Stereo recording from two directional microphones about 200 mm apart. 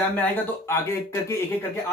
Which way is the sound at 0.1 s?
10° left (ahead or behind).